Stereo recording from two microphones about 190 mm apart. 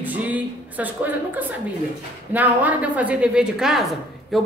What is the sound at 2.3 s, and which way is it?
A woman's voice, 10° right (ahead or behind).